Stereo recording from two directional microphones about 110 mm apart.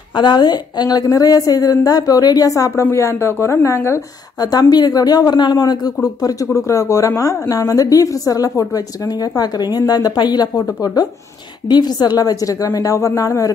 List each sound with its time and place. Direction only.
0.1 s a woman's voice: 45° left (ahead or behind); by 4.0 s 25° left (ahead or behind)
4.4 s a woman's voice: 35° left (ahead or behind)